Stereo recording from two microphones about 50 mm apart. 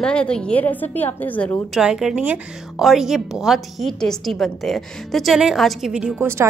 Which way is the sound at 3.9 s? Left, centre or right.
Centre.